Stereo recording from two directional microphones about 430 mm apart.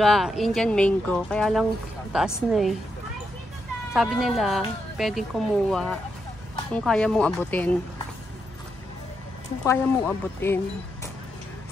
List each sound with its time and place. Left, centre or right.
0.0 s speech: centre
3.9 s speech: centre
9.7 s speech: centre